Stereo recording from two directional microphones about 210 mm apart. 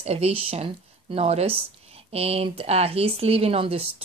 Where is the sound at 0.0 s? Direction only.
30° right (ahead or behind).